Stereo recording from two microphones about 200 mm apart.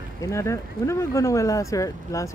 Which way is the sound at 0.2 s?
15° left (ahead or behind).